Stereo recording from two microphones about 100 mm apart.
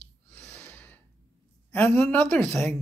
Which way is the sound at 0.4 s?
15° left (ahead or behind).